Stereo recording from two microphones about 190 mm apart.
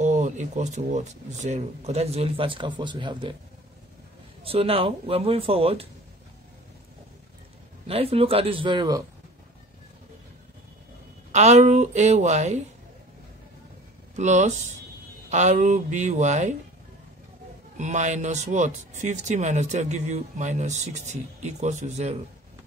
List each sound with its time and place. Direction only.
0.0 s speech: 40° right (ahead or behind); by 3.3 s 25° right (ahead or behind)
4.5 s speech: 30° right (ahead or behind)
7.8 s speech: 30° right (ahead or behind)
11.3 s speech: 35° right (ahead or behind)
14.1 s speech: 40° right (ahead or behind)
17.7 s speech: 40° right (ahead or behind)